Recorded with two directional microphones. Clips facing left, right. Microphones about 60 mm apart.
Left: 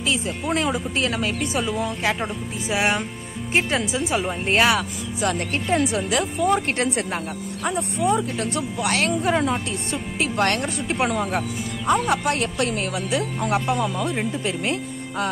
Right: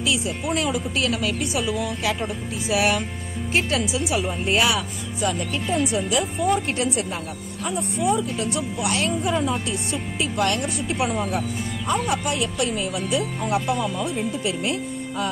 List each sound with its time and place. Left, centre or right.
0.0 s speech: left
5.2 s speech: left
9.7 s speech: left